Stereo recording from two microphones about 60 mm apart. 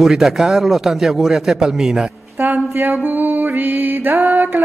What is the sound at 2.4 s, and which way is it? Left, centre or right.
Music, right.